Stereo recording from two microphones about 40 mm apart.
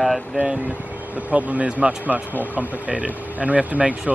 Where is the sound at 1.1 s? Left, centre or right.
Right.